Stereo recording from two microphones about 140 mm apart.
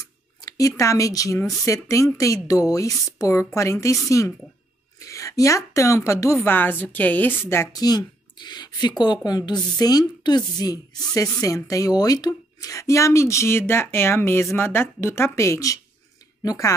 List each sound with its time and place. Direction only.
0.0 s a sound: 25° left (ahead or behind)
1.6 s speech: 20° left (ahead or behind)
7.7 s speech: 30° left (ahead or behind)